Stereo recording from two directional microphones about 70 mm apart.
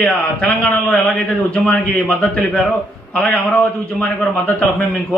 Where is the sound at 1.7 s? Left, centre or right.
Centre.